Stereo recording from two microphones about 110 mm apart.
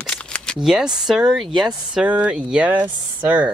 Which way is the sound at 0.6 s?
5° right (ahead or behind).